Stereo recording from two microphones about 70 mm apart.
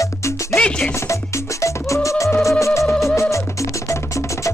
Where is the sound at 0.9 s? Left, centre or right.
Left.